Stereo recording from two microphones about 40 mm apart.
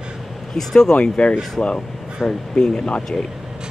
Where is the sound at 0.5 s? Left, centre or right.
Centre.